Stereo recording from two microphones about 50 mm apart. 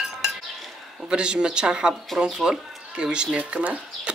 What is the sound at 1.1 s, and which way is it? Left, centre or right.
Speech, centre.